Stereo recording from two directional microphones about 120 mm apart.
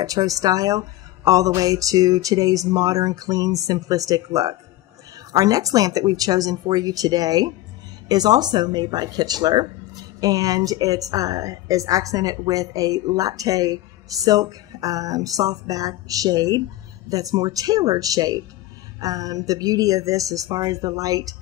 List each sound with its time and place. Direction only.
0.0 s a woman's voice: 30° right (ahead or behind)